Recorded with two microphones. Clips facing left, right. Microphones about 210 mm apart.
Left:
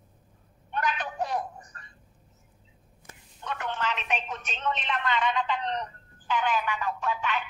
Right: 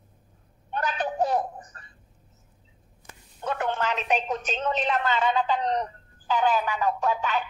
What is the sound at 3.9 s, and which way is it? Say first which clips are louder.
A woman's voice: right 6 dB; 35° right (ahead or behind).